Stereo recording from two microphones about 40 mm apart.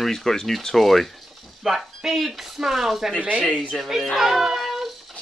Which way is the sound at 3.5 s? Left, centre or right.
Left.